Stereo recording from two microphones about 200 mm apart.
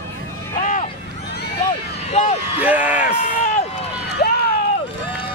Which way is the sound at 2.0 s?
35° left (ahead or behind).